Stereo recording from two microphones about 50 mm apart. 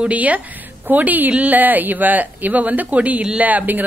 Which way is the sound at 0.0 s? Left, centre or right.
Right.